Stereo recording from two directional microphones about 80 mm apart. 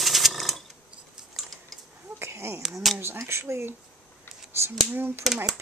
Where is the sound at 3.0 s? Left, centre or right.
Right.